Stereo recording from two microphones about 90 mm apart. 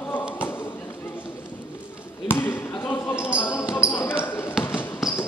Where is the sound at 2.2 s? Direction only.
25° left (ahead or behind).